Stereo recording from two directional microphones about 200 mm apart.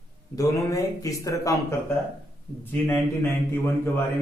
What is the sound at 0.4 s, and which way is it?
Speech, 15° left (ahead or behind).